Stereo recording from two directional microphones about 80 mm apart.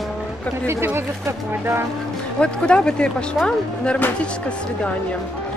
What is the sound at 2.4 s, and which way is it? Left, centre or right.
Speech, centre.